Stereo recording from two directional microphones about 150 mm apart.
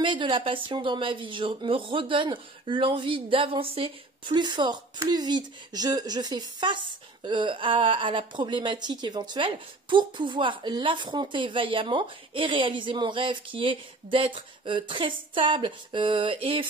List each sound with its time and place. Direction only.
0.0 s speech: 35° right (ahead or behind)